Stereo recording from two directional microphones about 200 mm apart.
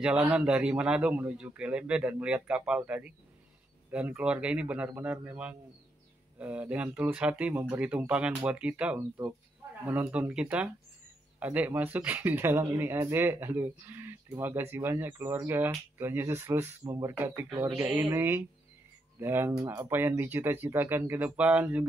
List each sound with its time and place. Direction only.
0.0 s a man's voice: 5° right (ahead or behind)